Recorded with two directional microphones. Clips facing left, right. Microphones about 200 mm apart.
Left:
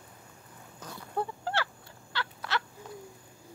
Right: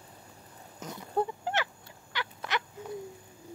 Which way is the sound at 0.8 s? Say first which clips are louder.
Right 4 dB; 20° right (ahead or behind).